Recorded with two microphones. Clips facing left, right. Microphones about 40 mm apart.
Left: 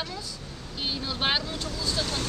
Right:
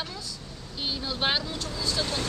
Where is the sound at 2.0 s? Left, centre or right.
Right.